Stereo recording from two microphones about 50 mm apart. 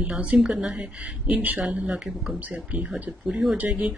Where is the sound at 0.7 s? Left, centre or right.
Right.